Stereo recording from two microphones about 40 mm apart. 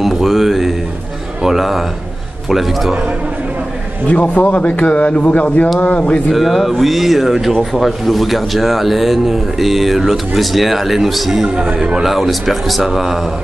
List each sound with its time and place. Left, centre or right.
0.0 s a sound: centre
1.4 s a man's voice: centre
4.1 s a man's voice: left
6.3 s speech: centre
11.4 s a man's voice: centre
12.1 s speech: centre